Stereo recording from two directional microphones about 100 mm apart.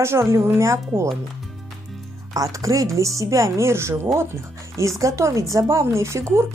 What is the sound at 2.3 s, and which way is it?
Speech, 35° right (ahead or behind).